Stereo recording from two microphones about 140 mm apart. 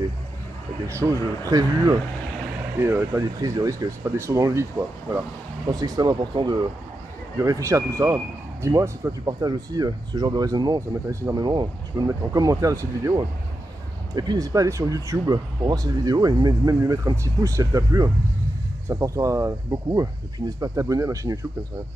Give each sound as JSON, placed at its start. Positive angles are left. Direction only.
{"t": 0.8, "sound": "speech", "side_deg": -20}
{"t": 5.7, "sound": "speech", "side_deg": -30}
{"t": 14.1, "sound": "speech", "side_deg": -30}